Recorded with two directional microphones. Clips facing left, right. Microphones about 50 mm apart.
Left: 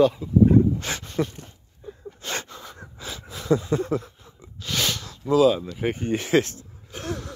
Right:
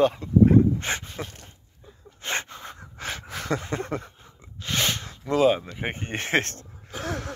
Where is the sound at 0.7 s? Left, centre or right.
Right.